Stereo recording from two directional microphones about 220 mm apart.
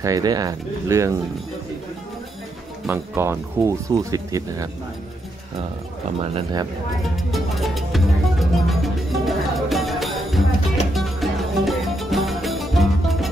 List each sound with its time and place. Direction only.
0.0 s speech: 15° right (ahead or behind)
2.9 s speech: 10° right (ahead or behind)
6.3 s speech: 20° right (ahead or behind)
7.2 s music: centre (ahead or behind)